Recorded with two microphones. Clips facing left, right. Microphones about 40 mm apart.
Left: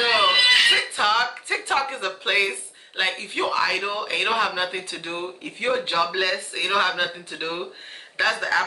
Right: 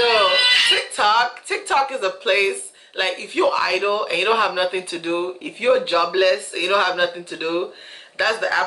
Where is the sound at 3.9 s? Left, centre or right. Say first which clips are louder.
Right 5 dB; centre.